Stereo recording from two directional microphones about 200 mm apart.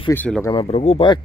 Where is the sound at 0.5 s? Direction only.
30° left (ahead or behind).